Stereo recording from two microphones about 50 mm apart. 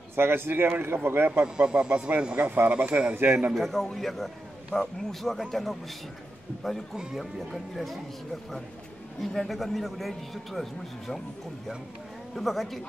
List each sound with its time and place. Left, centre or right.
0.1 s speech: right
1.4 s a man's voice: right
2.4 s speech: right
2.7 s a man's voice: right
3.2 s speech: right
3.5 s a man's voice: centre
9.2 s a man's voice: centre
12.4 s a man's voice: centre